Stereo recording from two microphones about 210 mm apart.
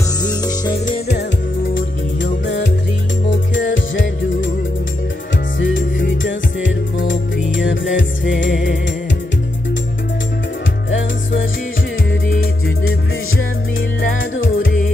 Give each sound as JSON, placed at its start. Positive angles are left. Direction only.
{"t": 0.2, "sound": "music", "side_deg": 20}
{"t": 0.8, "sound": "music", "side_deg": 50}
{"t": 1.7, "sound": "music", "side_deg": 65}
{"t": 3.3, "sound": "music", "side_deg": 60}
{"t": 5.6, "sound": "music", "side_deg": 60}
{"t": 14.3, "sound": "music", "side_deg": 65}